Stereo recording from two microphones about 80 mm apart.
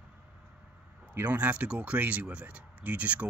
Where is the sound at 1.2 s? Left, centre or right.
Right.